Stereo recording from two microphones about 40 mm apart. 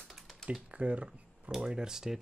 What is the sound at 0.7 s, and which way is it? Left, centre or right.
Speech, right.